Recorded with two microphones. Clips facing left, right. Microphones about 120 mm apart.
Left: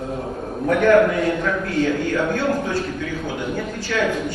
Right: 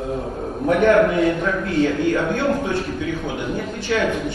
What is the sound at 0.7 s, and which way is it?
A man's voice, 25° right (ahead or behind).